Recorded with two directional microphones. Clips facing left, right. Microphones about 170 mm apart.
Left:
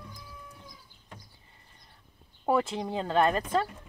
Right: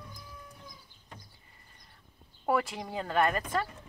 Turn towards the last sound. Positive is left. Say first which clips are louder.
# left 3 dB
turn(degrees=25)  # may be behind; listen again after turning